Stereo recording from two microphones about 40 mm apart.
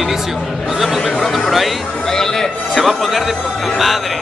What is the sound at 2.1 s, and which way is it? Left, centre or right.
Speech, centre.